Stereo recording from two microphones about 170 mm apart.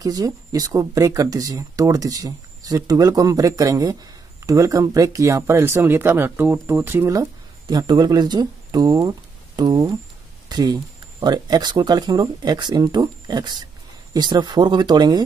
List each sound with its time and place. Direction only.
0.0 s speech: 20° right (ahead or behind)